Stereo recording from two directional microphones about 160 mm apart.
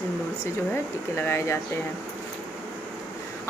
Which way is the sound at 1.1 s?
15° left (ahead or behind).